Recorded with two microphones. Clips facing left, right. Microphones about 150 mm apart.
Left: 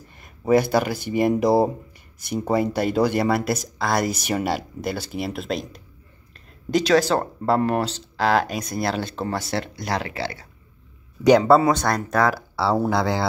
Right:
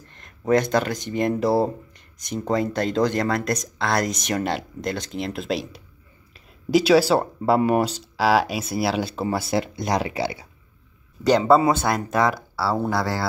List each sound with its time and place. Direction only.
0.0 s speech: 10° left (ahead or behind); by 10.4 s 15° right (ahead or behind)
11.2 s speech: 5° left (ahead or behind)
12.7 s speech: 10° left (ahead or behind)